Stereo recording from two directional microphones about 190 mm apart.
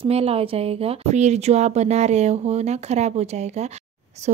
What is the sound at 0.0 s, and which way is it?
Speech, 30° right (ahead or behind).